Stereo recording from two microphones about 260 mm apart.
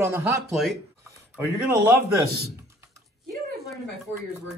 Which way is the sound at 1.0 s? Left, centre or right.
Centre.